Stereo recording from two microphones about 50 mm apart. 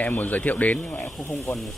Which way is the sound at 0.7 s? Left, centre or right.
Centre.